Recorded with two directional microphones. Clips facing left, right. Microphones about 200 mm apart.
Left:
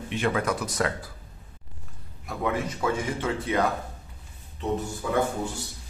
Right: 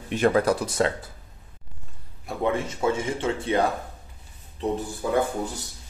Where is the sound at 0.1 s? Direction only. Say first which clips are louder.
Right 6 dB; 40° right (ahead or behind).